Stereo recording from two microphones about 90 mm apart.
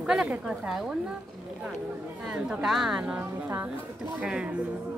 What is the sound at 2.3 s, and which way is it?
Speech, 10° right (ahead or behind).